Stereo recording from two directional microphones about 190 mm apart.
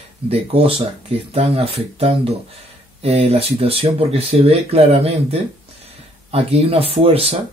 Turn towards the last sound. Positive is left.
turn(degrees=-30)  # may be behind; listen again after turning